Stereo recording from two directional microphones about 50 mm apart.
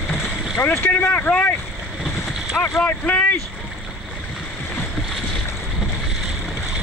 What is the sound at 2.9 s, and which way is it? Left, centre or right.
Speech, left.